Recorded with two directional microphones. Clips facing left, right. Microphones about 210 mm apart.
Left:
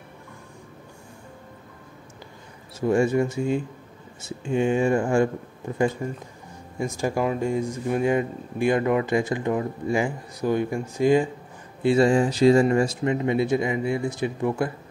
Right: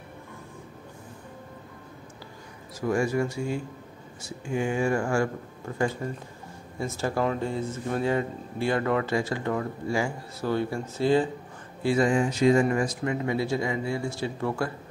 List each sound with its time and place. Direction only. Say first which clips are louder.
2.9 s speech: left 5 dB; 25° left (ahead or behind)
11.8 s speech: left 4 dB; 25° left (ahead or behind)